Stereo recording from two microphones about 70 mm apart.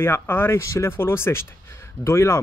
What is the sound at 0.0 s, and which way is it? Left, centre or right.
Speech, left.